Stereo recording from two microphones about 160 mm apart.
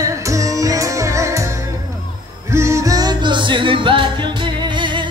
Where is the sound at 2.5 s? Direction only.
20° right (ahead or behind).